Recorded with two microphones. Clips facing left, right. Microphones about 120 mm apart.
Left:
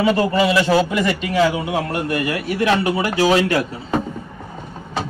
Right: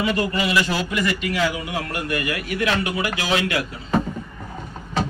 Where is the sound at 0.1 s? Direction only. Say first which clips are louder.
Left 5 dB; 30° left (ahead or behind).